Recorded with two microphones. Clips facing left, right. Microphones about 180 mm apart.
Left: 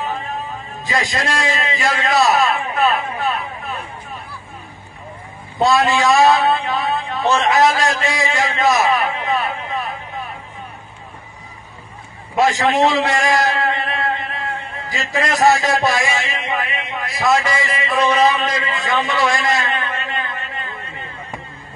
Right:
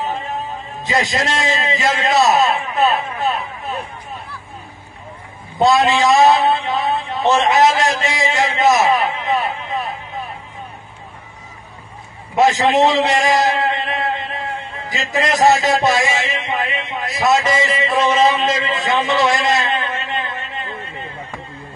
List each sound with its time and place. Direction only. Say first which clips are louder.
0.8 s a man's voice: right 2 dB; 20° right (ahead or behind)
5.6 s a man's voice: right 2 dB; 20° right (ahead or behind)
8.0 s a sound: right 1 dB; 20° right (ahead or behind)
12.4 s a man's voice: right 2 dB; 20° right (ahead or behind)